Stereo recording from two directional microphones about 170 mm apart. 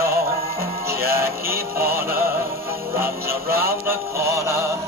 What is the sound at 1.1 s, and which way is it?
Music, 15° right (ahead or behind).